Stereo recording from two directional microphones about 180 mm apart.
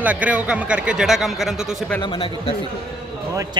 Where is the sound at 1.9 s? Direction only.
30° left (ahead or behind).